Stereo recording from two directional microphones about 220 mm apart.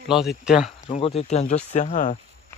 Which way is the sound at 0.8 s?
25° left (ahead or behind).